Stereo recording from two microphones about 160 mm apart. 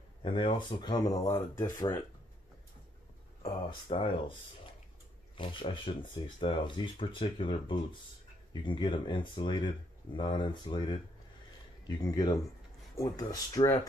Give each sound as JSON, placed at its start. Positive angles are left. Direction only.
{"t": 0.2, "sound": "speech", "side_deg": 30}
{"t": 3.9, "sound": "speech", "side_deg": 35}
{"t": 5.4, "sound": "speech", "side_deg": 30}
{"t": 12.0, "sound": "speech", "side_deg": 25}